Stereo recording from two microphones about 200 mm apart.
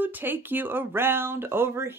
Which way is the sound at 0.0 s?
10° right (ahead or behind).